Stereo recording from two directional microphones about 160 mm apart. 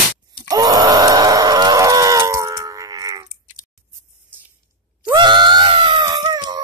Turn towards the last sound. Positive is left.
turn(degrees=-25)  # may be behind; listen again after turning